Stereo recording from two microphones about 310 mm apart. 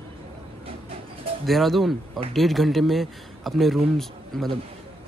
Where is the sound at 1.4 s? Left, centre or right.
Centre.